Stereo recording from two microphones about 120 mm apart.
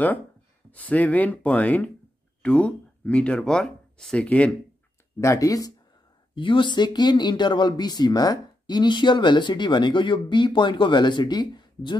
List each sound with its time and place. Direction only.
0.7 s speech: 15° left (ahead or behind)
5.2 s speech: 25° left (ahead or behind)
6.3 s speech: 45° left (ahead or behind)